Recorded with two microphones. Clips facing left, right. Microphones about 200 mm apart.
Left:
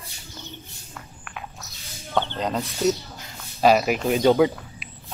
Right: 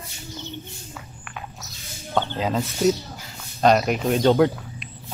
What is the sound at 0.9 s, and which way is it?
Walk, centre (ahead or behind).